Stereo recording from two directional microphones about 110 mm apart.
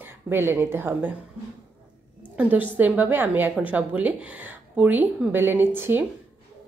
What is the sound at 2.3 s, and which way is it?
A woman's voice, 15° right (ahead or behind).